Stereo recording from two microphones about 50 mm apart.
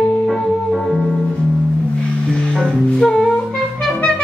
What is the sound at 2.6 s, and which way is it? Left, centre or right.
Music, centre.